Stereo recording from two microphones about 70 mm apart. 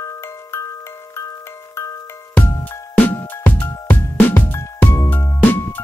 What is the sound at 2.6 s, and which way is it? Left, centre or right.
Music, left.